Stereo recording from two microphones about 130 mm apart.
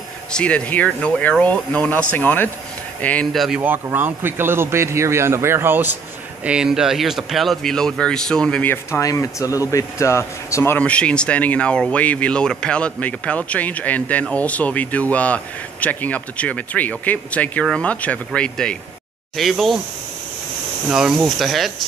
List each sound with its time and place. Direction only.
0.3 s speech: 10° left (ahead or behind)
3.3 s speech: 5° right (ahead or behind)
3.6 s a man's voice: 15° right (ahead or behind)
6.4 s speech: 5° right (ahead or behind); by 9.0 s 10° left (ahead or behind)
9.0 s speech: 25° left (ahead or behind); by 19.8 s centre (ahead or behind)
20.9 s speech: 5° right (ahead or behind)